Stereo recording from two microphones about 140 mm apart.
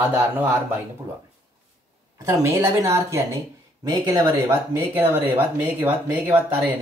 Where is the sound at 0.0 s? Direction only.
15° right (ahead or behind).